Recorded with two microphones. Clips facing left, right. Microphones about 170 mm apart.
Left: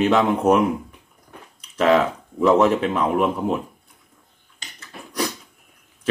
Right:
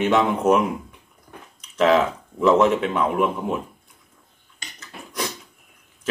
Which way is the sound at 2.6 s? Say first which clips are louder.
Left 1 dB; 40° left (ahead or behind).